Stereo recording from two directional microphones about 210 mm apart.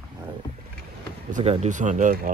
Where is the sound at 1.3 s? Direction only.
30° right (ahead or behind).